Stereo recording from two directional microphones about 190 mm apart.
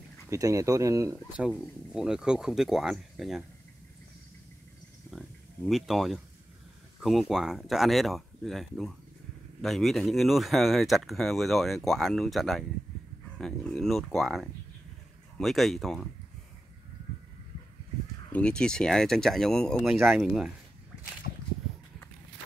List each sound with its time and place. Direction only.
0.3 s speech: 15° right (ahead or behind)
1.3 s speech: 5° right (ahead or behind)
5.1 s a sound: centre (ahead or behind)
7.0 s speech: centre (ahead or behind)
18.3 s speech: 5° left (ahead or behind)